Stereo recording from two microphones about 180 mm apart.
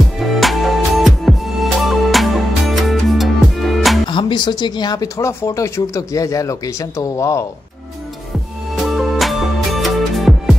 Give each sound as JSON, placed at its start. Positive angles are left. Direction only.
{"t": 0.2, "sound": "music", "side_deg": 0}
{"t": 4.1, "sound": "speech", "side_deg": 25}
{"t": 8.7, "sound": "music", "side_deg": 0}